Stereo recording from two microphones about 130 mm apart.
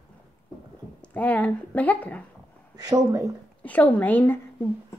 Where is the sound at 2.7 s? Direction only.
30° right (ahead or behind).